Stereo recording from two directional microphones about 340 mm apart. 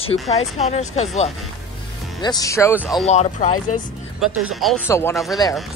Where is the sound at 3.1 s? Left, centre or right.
Centre.